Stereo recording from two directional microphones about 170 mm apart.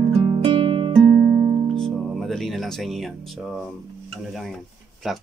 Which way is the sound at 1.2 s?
15° right (ahead or behind).